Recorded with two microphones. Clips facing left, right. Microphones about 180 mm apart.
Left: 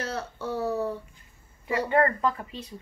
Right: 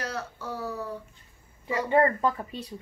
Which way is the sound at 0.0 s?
25° left (ahead or behind).